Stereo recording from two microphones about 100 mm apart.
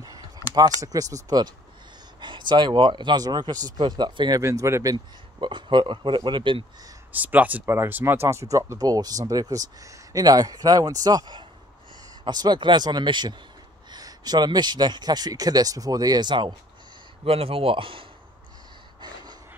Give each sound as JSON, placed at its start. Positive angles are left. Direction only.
{"t": 0.4, "sound": "a sound", "side_deg": 35}
{"t": 0.7, "sound": "speech", "side_deg": -35}
{"t": 2.1, "sound": "speech", "side_deg": -50}
{"t": 4.4, "sound": "speech", "side_deg": -30}
{"t": 4.9, "sound": "speech", "side_deg": -50}
{"t": 7.1, "sound": "speech", "side_deg": -15}
{"t": 17.2, "sound": "speech", "side_deg": -70}
{"t": 18.9, "sound": "gasp", "side_deg": -45}